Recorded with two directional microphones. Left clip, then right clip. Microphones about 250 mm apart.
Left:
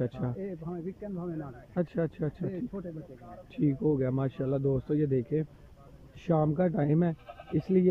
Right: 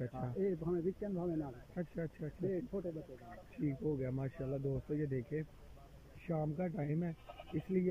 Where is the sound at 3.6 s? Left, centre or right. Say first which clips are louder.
Left 11 dB; centre.